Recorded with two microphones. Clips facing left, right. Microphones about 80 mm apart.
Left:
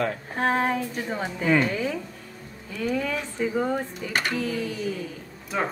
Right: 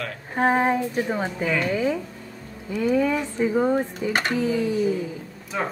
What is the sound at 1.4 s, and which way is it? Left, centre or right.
Speech, left.